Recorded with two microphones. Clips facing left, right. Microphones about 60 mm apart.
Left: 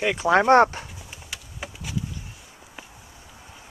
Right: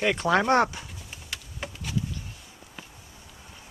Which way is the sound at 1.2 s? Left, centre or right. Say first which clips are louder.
Even; centre.